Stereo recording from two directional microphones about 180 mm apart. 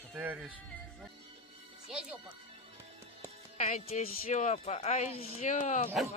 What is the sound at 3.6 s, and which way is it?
Speech, 40° left (ahead or behind).